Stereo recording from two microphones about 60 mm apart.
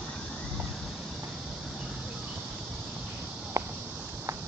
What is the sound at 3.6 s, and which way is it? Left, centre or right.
Walk, right.